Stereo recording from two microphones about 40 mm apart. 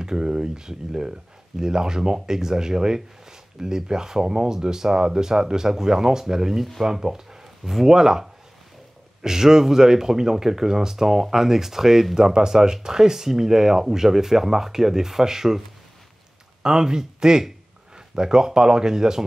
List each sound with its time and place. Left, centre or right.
0.0 s speech: centre
16.6 s speech: centre